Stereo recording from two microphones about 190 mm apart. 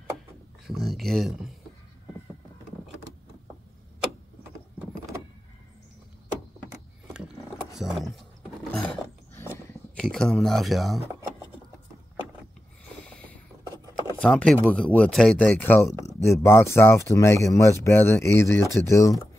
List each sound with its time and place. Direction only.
0.7 s speech: centre (ahead or behind)
7.7 s speech: centre (ahead or behind)
8.7 s a sound: 5° left (ahead or behind)
10.1 s speech: 5° left (ahead or behind)
13.0 s boat: 5° left (ahead or behind)
14.2 s speech: 5° left (ahead or behind)